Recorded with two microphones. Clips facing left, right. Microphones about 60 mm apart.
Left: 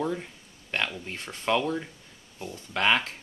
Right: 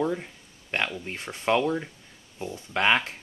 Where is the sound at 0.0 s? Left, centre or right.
Centre.